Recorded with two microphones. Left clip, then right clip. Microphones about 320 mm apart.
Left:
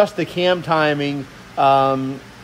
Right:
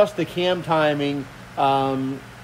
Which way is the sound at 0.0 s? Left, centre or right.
Left.